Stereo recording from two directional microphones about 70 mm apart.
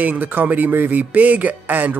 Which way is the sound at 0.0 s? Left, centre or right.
Right.